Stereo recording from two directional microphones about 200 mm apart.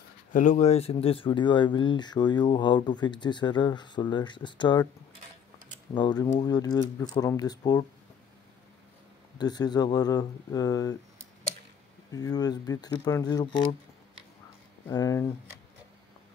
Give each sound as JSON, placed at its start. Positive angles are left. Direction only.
{"t": 0.3, "sound": "speech", "side_deg": 40}
{"t": 5.9, "sound": "speech", "side_deg": 20}
{"t": 9.4, "sound": "speech", "side_deg": 20}
{"t": 12.1, "sound": "speech", "side_deg": 20}
{"t": 14.9, "sound": "speech", "side_deg": 15}